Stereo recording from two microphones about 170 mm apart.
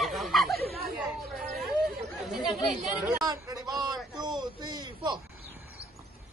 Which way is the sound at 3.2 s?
20° right (ahead or behind).